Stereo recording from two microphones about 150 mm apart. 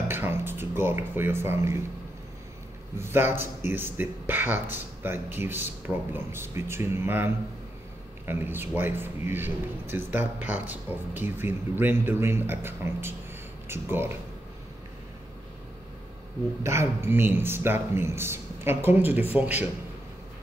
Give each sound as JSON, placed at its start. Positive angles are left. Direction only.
{"t": 0.1, "sound": "speech", "side_deg": -15}
{"t": 3.0, "sound": "a man's voice", "side_deg": -15}
{"t": 16.6, "sound": "a man's voice", "side_deg": -20}